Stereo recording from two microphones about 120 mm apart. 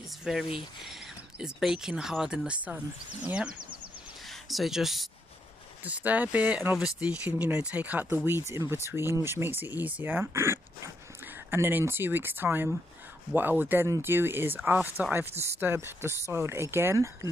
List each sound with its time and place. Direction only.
0.2 s speech: 5° right (ahead or behind); by 17.3 s 25° right (ahead or behind)